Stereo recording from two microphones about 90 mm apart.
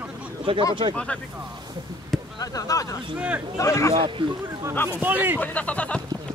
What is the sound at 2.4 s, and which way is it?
Speech, 40° left (ahead or behind).